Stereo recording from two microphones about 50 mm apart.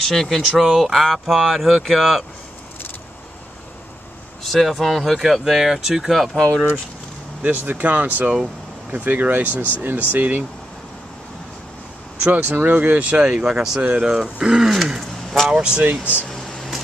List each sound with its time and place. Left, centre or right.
0.0 s speech: centre
4.4 s speech: centre
7.4 s speech: right
12.2 s speech: right; by 13.7 s centre
13.7 s speech: right
14.0 s speech: centre
15.5 s speech: right
16.3 s a sound: centre